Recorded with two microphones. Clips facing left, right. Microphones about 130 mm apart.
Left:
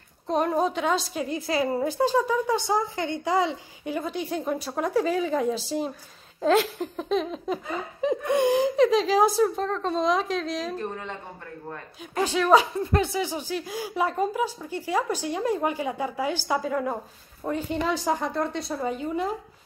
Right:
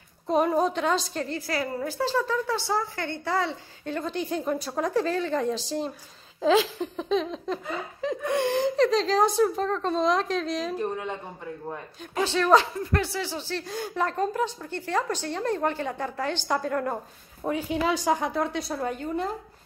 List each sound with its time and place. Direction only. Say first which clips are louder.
0.3 s a woman's voice: right 1 dB; centre (ahead or behind)
8.0 s speech: left 4 dB; 20° left (ahead or behind)
8.5 s a woman's voice: left 2 dB; 5° left (ahead or behind)
12.2 s a woman's voice: left 1 dB; 10° left (ahead or behind)
12.8 s a woman's voice: left 3 dB; 20° left (ahead or behind)